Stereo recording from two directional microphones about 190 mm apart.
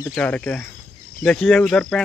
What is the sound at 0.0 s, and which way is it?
Speech, 10° left (ahead or behind).